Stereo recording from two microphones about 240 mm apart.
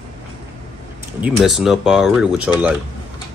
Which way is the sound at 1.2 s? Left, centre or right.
Centre.